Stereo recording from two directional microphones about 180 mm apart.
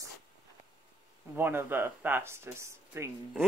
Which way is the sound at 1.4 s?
10° right (ahead or behind).